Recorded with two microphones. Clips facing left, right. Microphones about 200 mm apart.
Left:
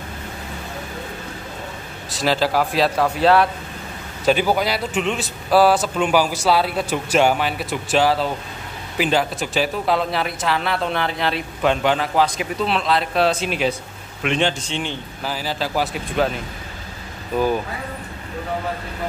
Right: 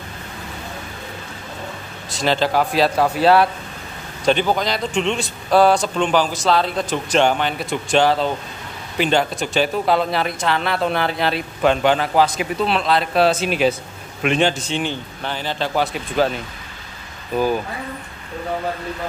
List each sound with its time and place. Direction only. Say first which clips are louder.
2.0 s a man's voice: right 1 dB; 5° left (ahead or behind)
3.0 s speech: right 1 dB; 35° right (ahead or behind)
4.2 s a man's voice: even; 5° left (ahead or behind)
15.2 s a man's voice: right 1 dB; 5° left (ahead or behind)